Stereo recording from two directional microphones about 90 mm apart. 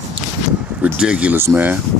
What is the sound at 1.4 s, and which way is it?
Speech, 25° right (ahead or behind).